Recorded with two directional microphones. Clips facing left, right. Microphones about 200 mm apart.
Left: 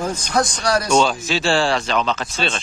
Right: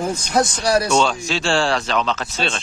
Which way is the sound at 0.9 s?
5° left (ahead or behind).